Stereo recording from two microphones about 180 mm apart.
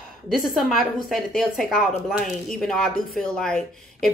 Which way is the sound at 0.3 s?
Centre (ahead or behind).